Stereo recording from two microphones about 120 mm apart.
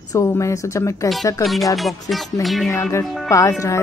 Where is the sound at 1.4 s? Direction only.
Centre (ahead or behind).